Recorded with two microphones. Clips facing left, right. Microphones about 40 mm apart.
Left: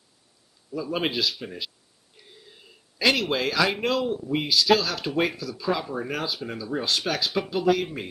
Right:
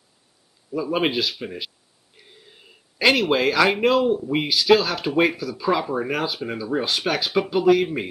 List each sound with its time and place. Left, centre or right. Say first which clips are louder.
0.7 s speech: right 5 dB; right